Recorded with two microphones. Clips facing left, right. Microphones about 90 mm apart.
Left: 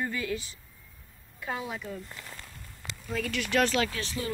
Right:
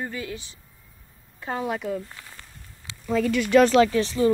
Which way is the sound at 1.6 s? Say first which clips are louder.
Right 9 dB; 80° right.